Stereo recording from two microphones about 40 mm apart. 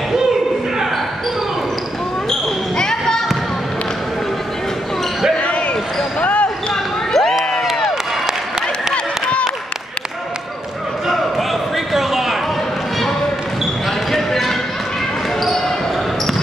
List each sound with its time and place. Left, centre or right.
2.8 s basketball bounce: centre
6.2 s basketball bounce: left
6.7 s basketball bounce: centre
7.6 s crowd: centre
11.9 s a sound: centre
14.1 s basketball bounce: centre